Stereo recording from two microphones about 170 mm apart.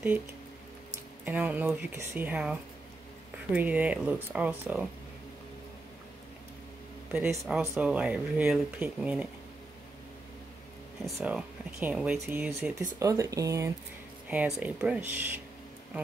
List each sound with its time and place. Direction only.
1.2 s speech: 10° right (ahead or behind)
3.5 s speech: 10° right (ahead or behind)
7.1 s speech: 10° right (ahead or behind)
11.1 s speech: 10° right (ahead or behind)
14.3 s speech: 10° right (ahead or behind)